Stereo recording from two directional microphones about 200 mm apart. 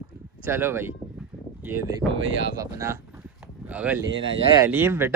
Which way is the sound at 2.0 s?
Centre (ahead or behind).